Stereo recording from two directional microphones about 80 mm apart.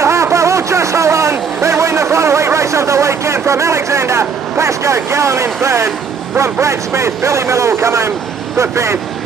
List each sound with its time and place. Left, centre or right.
0.0 s vehicle: right
6.3 s speech: right